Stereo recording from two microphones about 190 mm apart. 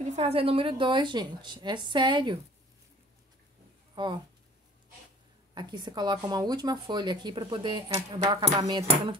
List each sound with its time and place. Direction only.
0.0 s speech: 35° right (ahead or behind)
3.9 s speech: 25° right (ahead or behind)
5.5 s speech: 20° right (ahead or behind)